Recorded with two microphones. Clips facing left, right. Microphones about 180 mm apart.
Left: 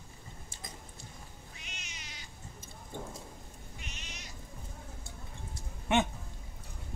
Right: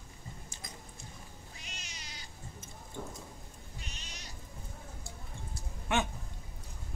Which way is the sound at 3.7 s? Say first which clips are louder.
Left 1 dB; 35° right (ahead or behind).